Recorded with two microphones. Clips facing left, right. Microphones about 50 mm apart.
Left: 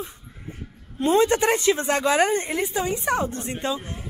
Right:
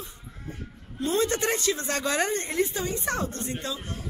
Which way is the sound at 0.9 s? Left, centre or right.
Left.